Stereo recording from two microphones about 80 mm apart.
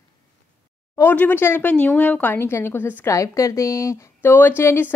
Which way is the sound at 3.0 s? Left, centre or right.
Left.